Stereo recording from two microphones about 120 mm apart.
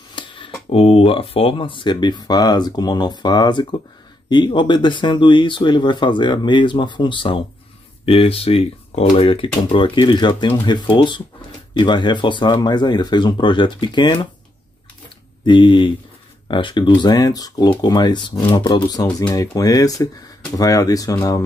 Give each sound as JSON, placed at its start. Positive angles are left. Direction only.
{"t": 0.1, "sound": "speech", "side_deg": 45}
{"t": 15.4, "sound": "speech", "side_deg": 40}